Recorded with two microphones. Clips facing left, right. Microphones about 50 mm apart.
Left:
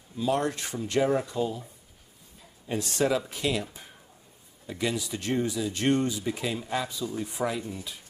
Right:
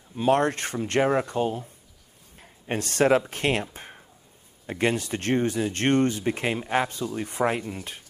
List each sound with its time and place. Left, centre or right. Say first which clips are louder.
0.1 s speech: right 5 dB; right
3.7 s a sound: right 5 dB; right
4.6 s speech: right 5 dB; right